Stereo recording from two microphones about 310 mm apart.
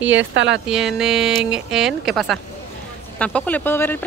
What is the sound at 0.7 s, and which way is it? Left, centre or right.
Speech, centre.